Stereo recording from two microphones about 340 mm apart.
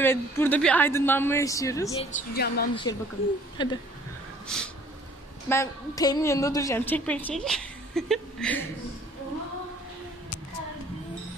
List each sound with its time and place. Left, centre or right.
0.0 s speech: centre
2.1 s a woman's voice: left
2.7 s speech: centre
4.5 s a woman's voice: centre